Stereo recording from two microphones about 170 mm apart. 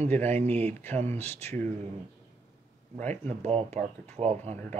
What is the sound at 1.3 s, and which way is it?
Speech, 15° left (ahead or behind).